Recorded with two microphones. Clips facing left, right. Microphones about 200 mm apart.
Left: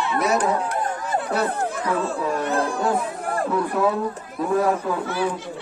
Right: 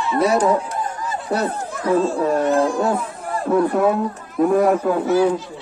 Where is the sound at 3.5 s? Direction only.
50° right (ahead or behind).